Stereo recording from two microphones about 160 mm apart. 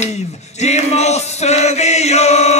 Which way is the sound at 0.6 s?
45° left (ahead or behind).